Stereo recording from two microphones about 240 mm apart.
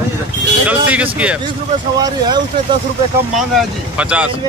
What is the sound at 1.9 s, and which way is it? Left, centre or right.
Speech, centre.